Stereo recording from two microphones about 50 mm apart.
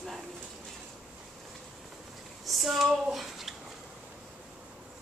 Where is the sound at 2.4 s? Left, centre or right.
Centre.